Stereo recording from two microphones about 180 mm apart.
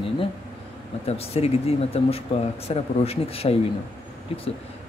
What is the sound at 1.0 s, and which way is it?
Speech, 35° left (ahead or behind).